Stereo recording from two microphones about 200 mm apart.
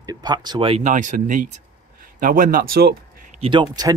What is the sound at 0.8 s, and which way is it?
Speech, 40° right (ahead or behind).